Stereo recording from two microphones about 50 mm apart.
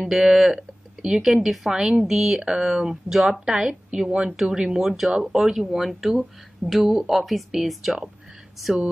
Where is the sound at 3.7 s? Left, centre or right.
Right.